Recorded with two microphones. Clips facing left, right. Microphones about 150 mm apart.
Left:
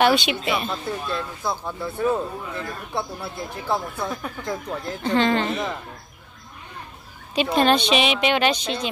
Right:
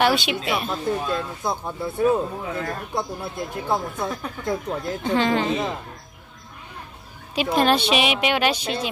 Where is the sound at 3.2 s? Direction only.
15° right (ahead or behind).